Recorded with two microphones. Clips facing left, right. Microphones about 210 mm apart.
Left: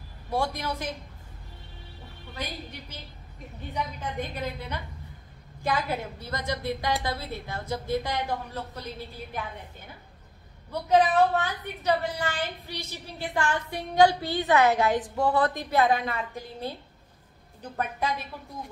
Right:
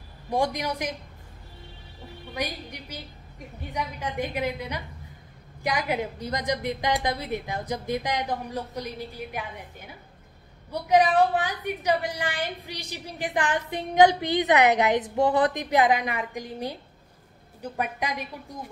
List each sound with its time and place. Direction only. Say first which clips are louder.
0.3 s a woman's voice: right 3 dB; 15° right (ahead or behind)
2.3 s a woman's voice: right 4 dB; 15° right (ahead or behind)
10.7 s a woman's voice: right 1 dB; 15° right (ahead or behind)